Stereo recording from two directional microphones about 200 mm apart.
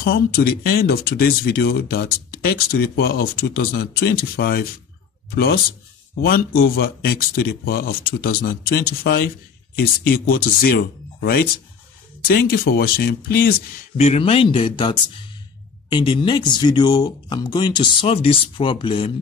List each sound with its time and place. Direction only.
0.0 s speech: 50° left (ahead or behind)
13.9 s speech: 35° left (ahead or behind)